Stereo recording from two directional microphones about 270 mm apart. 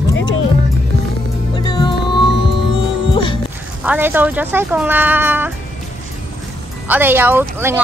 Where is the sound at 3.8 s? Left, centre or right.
Centre.